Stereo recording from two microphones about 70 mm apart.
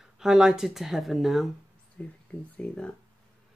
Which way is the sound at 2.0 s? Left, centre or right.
Centre.